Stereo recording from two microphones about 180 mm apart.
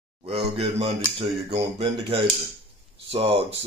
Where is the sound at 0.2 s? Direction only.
35° right (ahead or behind).